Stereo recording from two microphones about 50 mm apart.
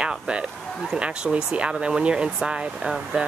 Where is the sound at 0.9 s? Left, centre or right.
Centre.